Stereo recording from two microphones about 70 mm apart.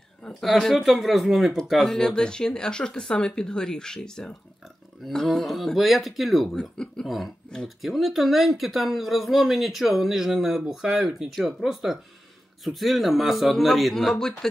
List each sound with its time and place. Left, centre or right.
0.3 s speech: centre
6.5 s speech: centre
7.1 s speech: centre